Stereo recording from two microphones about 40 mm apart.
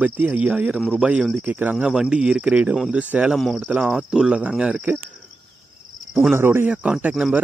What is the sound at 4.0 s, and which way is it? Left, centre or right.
Speech, centre.